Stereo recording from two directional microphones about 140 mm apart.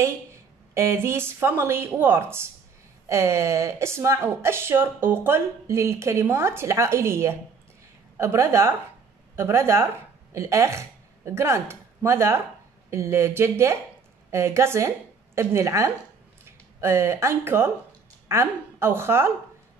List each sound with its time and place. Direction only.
0.7 s speech: 20° right (ahead or behind)